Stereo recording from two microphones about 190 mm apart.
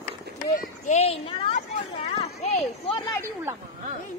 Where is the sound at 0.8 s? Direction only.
35° left (ahead or behind).